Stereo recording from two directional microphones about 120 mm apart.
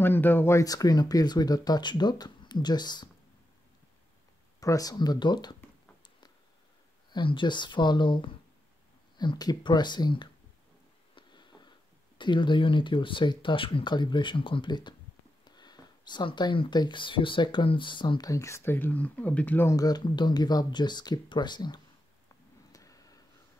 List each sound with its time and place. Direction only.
0.0 s speech: 15° left (ahead or behind); by 3.1 s 35° left (ahead or behind)
4.6 s speech: 30° left (ahead or behind)
7.1 s speech: 40° left (ahead or behind)
11.1 s a sound: 40° left (ahead or behind)
12.2 s speech: 40° left (ahead or behind); by 19.7 s 15° left (ahead or behind)
19.7 s speech: 30° left (ahead or behind)
22.7 s a sound: 30° left (ahead or behind)